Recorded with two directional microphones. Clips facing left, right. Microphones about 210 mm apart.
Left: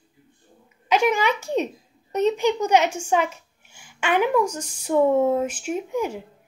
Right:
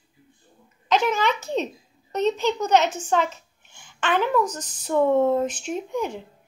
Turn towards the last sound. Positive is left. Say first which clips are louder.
# left 2 dB
turn(degrees=5)  # may be behind; listen again after turning